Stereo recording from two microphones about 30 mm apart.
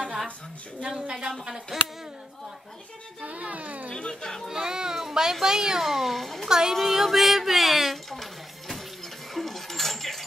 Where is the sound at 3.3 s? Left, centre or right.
Right.